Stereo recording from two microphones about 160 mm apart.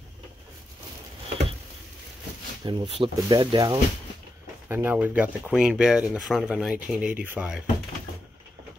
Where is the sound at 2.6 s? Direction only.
35° right (ahead or behind).